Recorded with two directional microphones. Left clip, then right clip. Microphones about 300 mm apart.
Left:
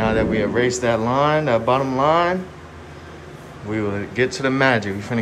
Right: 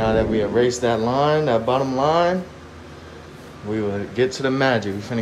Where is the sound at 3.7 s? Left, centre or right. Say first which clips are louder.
Even; centre.